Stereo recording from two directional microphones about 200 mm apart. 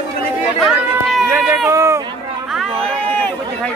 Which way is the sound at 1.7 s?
15° right (ahead or behind).